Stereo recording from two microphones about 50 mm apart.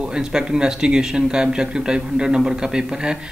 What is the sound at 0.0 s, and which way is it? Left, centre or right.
Speech, centre.